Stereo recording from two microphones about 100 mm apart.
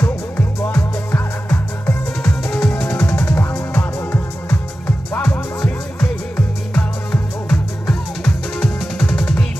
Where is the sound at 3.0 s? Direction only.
30° left (ahead or behind).